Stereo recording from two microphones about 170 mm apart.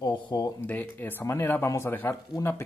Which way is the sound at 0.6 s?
10° left (ahead or behind).